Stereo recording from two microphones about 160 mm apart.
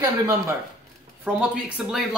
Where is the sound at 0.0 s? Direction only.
20° right (ahead or behind).